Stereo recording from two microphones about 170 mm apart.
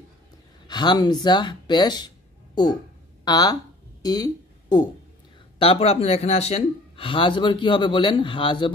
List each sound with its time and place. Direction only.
0.7 s speech: 25° left (ahead or behind)
4.0 s a sound: 25° left (ahead or behind)
5.6 s speech: 35° left (ahead or behind)